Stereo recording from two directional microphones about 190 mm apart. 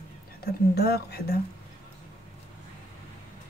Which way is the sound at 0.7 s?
55° left (ahead or behind).